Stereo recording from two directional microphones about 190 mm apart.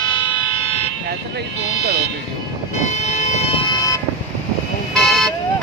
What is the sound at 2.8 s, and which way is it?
Vehicle, 40° left (ahead or behind).